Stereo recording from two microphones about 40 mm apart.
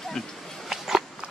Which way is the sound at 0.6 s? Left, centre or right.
Centre.